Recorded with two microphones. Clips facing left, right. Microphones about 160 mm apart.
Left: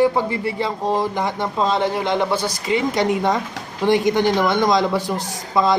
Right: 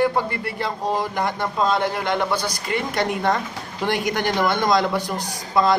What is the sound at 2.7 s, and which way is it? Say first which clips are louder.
Speech: left 5 dB; 5° left (ahead or behind).